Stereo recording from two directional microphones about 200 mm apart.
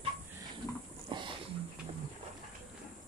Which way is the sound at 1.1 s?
25° right (ahead or behind).